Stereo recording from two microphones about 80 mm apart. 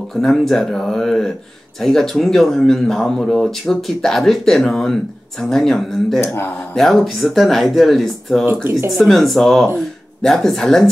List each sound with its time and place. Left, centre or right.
0.1 s speech: centre
6.2 s speech: left
6.7 s speech: centre